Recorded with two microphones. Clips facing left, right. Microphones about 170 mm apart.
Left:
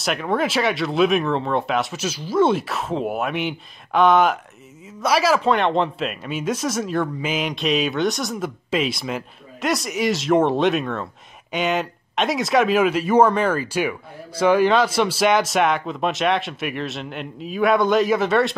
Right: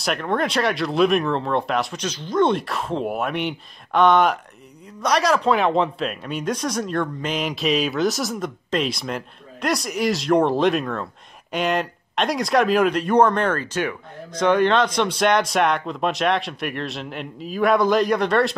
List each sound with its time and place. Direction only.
0.0 s speech: centre (ahead or behind)